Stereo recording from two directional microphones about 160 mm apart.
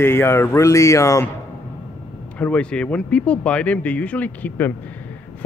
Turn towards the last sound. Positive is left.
turn(degrees=10)  # may be behind; listen again after turning